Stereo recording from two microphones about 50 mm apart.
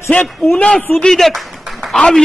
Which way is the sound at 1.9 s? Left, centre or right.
Centre.